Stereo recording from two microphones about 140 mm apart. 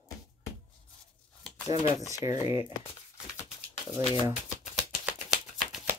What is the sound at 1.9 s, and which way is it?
Speech, 20° right (ahead or behind).